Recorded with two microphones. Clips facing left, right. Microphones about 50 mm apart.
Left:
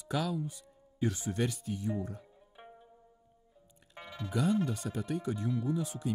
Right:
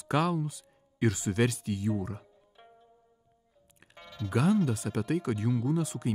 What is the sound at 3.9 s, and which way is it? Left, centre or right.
Music, centre.